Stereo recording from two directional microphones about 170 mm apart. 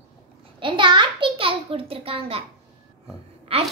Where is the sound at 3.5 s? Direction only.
35° right (ahead or behind).